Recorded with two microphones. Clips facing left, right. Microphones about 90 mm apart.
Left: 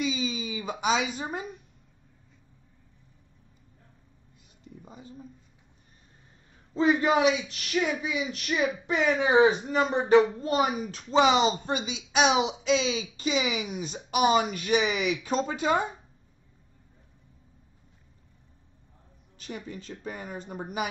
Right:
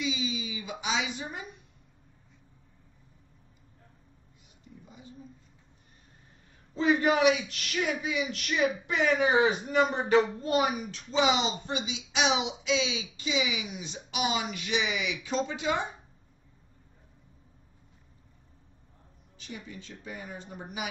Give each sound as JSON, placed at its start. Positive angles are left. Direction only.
{"t": 0.0, "sound": "a sound", "side_deg": 45}
{"t": 6.7, "sound": "speech", "side_deg": 30}
{"t": 8.9, "sound": "speech", "side_deg": 35}
{"t": 11.2, "sound": "speech", "side_deg": 50}
{"t": 19.4, "sound": "speech", "side_deg": 45}